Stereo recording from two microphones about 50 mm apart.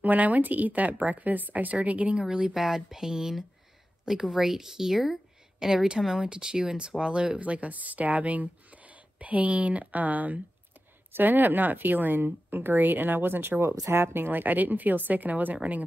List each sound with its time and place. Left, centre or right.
0.0 s speech: right
2.2 s speech: centre